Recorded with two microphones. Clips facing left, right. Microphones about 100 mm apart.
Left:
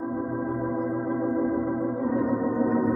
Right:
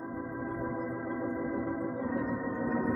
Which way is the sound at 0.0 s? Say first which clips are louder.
Left 9 dB; 30° left (ahead or behind).